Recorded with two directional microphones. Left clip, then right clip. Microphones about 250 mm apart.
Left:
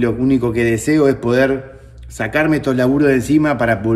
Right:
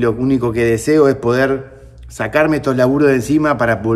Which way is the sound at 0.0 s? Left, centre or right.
Centre.